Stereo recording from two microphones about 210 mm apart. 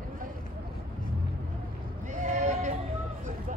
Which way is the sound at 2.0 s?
35° right (ahead or behind).